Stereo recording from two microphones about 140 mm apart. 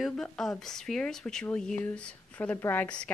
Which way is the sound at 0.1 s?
5° left (ahead or behind).